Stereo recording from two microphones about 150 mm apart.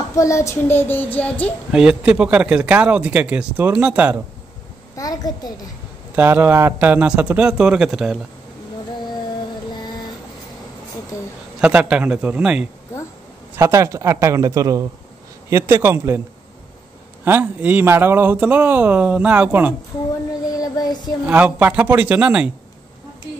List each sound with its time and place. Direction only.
0.1 s child singing: 20° left (ahead or behind)
1.7 s speech: 5° right (ahead or behind)
4.9 s a child's voice: 25° left (ahead or behind)
6.1 s speech: 15° right (ahead or behind)
11.6 s speech: 10° right (ahead or behind)
13.6 s a man's voice: 20° right (ahead or behind)
17.2 s speech: 15° right (ahead or behind)
20.4 s child singing: 25° left (ahead or behind)
21.3 s speech: 10° right (ahead or behind)